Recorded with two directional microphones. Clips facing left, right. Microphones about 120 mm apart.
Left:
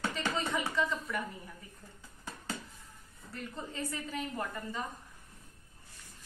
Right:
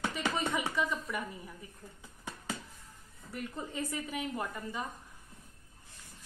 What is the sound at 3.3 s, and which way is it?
A woman's voice, 15° right (ahead or behind).